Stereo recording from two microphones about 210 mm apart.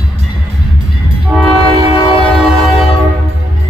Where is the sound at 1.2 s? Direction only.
Centre (ahead or behind).